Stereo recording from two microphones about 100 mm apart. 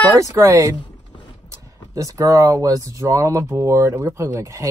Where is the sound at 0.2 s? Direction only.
30° right (ahead or behind).